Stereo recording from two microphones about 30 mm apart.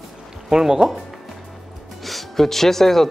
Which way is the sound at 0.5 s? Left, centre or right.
Right.